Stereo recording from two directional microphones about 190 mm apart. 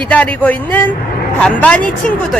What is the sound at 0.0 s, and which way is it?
A woman's voice, 10° left (ahead or behind).